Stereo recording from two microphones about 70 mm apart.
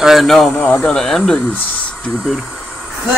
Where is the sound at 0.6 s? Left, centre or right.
Left.